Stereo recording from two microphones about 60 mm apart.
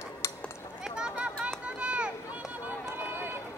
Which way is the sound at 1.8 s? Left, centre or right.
Centre.